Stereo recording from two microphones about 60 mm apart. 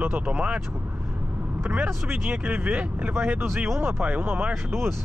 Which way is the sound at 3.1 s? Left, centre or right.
Right.